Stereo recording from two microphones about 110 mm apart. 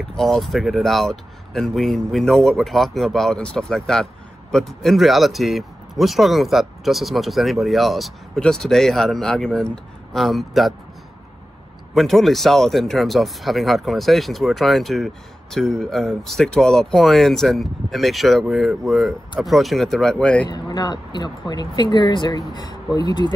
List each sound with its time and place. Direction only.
0.1 s speech: 5° left (ahead or behind)
11.9 s speech: centre (ahead or behind)
20.4 s speech: 40° left (ahead or behind)